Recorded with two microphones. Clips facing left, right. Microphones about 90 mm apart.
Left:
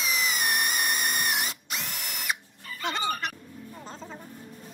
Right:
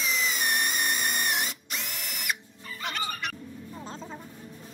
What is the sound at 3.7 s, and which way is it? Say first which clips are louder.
Vehicle: right 1 dB; centre (ahead or behind).